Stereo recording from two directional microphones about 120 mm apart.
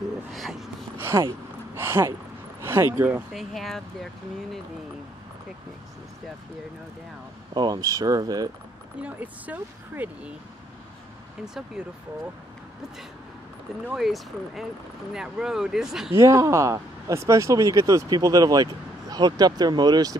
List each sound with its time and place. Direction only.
0.3 s a sound: centre (ahead or behind)
0.9 s speech: 20° right (ahead or behind)
3.3 s speech: centre (ahead or behind)
7.5 s speech: 35° right (ahead or behind)
9.0 s speech: 15° right (ahead or behind)
11.4 s speech: 5° right (ahead or behind)
13.9 s speech: centre (ahead or behind)
16.2 s speech: 25° right (ahead or behind)